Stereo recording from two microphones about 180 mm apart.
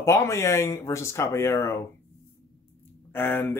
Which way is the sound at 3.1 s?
10° left (ahead or behind).